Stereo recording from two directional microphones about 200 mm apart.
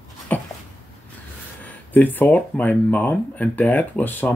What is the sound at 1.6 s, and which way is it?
Speech, 10° left (ahead or behind).